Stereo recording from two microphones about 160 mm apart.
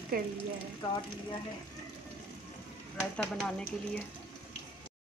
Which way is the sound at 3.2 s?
5° left (ahead or behind).